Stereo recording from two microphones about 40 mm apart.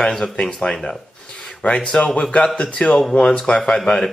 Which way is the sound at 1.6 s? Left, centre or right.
Left.